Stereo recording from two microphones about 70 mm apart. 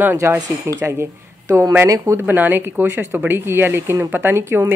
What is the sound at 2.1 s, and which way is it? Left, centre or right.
A woman's voice, right.